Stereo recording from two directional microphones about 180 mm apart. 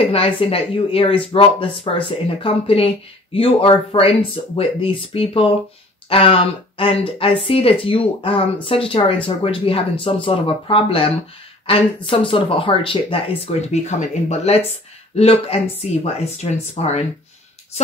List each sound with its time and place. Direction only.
0.0 s speech: 30° left (ahead or behind)